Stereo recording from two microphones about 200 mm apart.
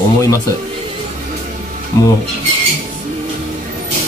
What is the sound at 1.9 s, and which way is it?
Speech, 15° left (ahead or behind).